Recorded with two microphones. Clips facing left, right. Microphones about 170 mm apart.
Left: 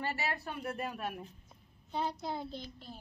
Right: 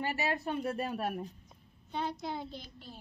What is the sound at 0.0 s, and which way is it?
Speech, 15° right (ahead or behind).